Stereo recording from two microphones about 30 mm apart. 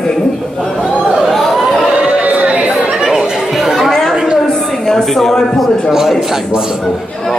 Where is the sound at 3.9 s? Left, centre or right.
Centre.